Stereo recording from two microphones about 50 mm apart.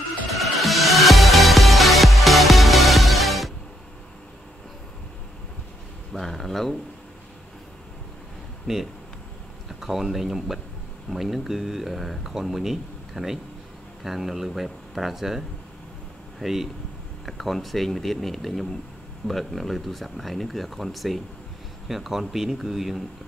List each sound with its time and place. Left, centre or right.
0.3 s music: centre
6.1 s a sound: centre
8.7 s speech: centre